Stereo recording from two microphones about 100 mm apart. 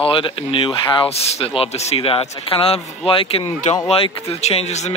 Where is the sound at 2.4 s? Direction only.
70° left (ahead or behind).